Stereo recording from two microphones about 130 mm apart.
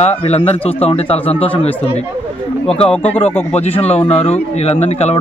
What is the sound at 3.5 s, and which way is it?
Speech, 50° left (ahead or behind).